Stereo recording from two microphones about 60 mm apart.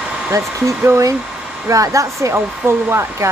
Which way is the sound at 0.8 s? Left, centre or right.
Right.